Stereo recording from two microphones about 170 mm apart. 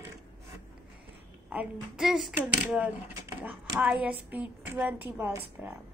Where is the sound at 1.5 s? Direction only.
5° right (ahead or behind).